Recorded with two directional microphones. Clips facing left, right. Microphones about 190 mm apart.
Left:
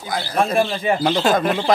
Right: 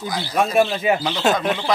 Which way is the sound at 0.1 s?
55° left (ahead or behind).